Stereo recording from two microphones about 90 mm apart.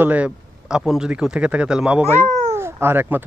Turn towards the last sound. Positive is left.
turn(degrees=-25)  # may be behind; listen again after turning